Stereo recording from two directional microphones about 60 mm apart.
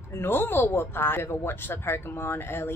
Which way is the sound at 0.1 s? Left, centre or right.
Left.